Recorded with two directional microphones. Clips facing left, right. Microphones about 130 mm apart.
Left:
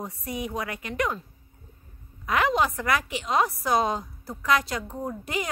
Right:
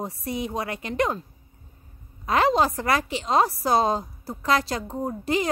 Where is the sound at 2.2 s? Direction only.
35° right (ahead or behind).